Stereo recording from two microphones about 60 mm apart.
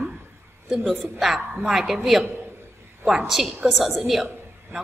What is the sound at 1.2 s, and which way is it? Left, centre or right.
A woman's voice, centre.